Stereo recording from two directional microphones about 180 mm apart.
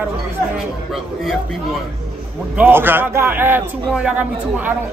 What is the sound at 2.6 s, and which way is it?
A man's voice, 10° right (ahead or behind).